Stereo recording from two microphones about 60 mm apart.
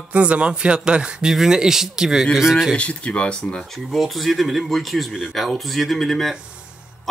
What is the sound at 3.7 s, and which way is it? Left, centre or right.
Speech, centre.